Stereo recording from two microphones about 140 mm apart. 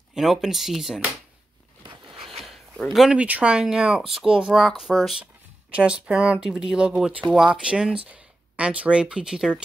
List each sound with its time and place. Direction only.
0.1 s speech: 5° right (ahead or behind)
1.8 s a sound: 40° right (ahead or behind)
2.4 s speech: centre (ahead or behind)